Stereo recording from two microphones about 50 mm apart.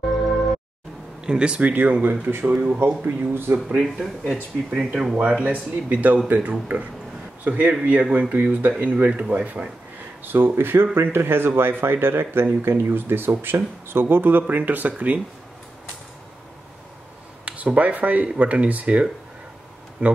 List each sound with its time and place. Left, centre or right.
0.0 s music: centre
1.2 s speech: centre; by 3.5 s right
4.6 s speech: centre
5.1 s speech: right
10.2 s speech: right
17.5 s speech: right